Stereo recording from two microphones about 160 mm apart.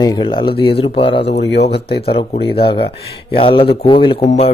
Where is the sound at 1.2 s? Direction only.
90° left.